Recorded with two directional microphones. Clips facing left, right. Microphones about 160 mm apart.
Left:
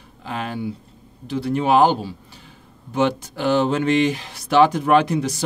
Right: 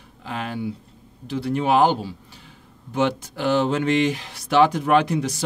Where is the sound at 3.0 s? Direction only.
40° left (ahead or behind).